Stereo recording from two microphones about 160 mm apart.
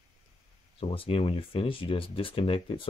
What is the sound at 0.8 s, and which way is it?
Speech, 35° left (ahead or behind).